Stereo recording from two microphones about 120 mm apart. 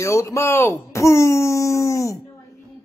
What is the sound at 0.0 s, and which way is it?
A man's voice, 25° left (ahead or behind).